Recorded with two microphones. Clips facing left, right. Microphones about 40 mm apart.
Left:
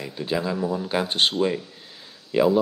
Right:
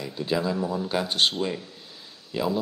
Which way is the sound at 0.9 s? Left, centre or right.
Left.